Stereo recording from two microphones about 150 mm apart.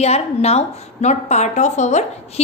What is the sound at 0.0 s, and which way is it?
A woman's voice, 45° left (ahead or behind).